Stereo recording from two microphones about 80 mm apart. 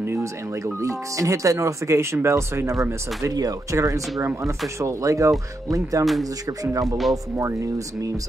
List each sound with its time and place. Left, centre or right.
0.0 s music: right
0.7 s speech: right
3.7 s speech: right